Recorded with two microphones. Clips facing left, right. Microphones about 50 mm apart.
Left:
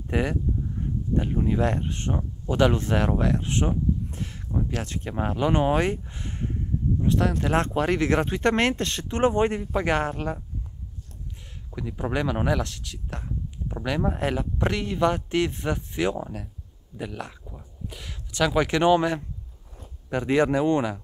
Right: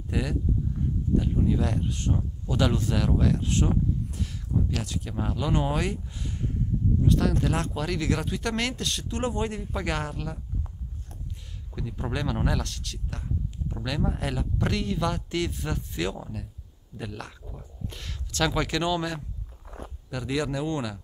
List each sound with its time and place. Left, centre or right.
0.1 s speech: left
0.8 s a sound: left
1.1 s speech: left
11.7 s speech: centre
16.9 s speech: centre; by 21.0 s left